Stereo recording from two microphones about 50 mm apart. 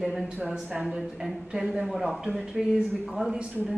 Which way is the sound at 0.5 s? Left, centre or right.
Centre.